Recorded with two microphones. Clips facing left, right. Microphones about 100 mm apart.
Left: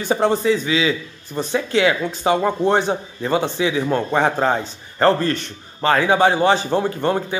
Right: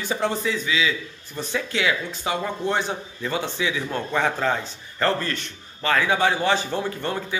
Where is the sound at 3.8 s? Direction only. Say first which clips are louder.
Left 6 dB; 45° left (ahead or behind).